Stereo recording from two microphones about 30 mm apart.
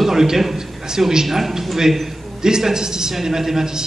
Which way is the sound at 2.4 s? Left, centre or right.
Right.